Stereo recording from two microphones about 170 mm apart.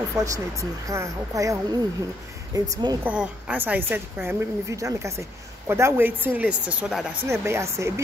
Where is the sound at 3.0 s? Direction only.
10° right (ahead or behind).